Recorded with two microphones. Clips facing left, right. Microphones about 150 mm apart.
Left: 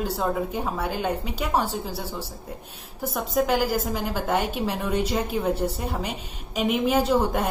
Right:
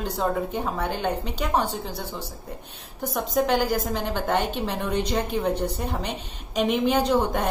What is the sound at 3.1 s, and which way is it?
A woman's voice, 5° left (ahead or behind).